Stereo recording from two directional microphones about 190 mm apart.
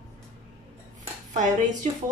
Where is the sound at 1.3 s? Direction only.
40° right (ahead or behind).